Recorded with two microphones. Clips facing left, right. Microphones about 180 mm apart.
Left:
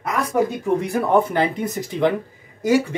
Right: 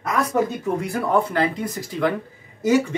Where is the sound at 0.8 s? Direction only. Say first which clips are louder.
Left 2 dB; 20° left (ahead or behind).